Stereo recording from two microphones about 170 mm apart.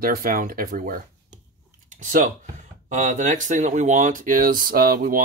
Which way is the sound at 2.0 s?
50° right (ahead or behind).